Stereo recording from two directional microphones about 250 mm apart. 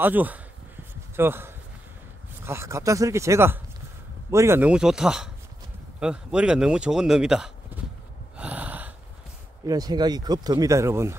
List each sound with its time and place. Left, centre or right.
0.0 s speech: centre
8.4 s gasp: centre
9.7 s speech: centre